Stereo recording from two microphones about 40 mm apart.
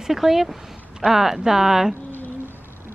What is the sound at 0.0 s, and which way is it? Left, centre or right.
Speech, centre.